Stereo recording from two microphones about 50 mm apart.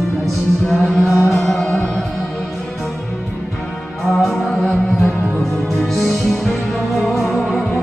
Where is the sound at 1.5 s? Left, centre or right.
Centre.